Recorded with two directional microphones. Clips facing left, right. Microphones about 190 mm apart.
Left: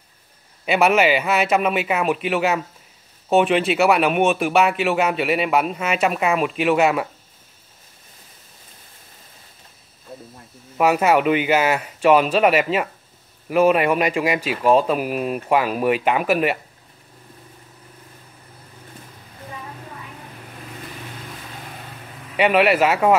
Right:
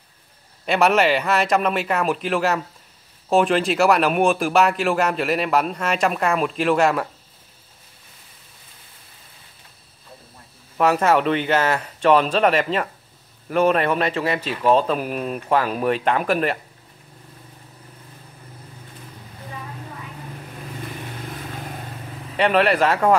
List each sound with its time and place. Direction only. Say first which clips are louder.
0.7 s a man's voice: left 1 dB; 5° left (ahead or behind)
10.8 s speech: left 1 dB; 10° left (ahead or behind)
22.4 s speech: left 1 dB; 5° left (ahead or behind)